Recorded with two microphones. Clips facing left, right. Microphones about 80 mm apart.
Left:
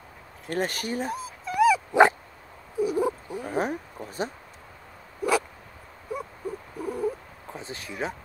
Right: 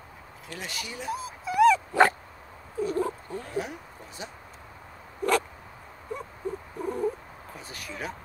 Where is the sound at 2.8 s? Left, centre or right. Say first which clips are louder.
Left 3 dB; centre.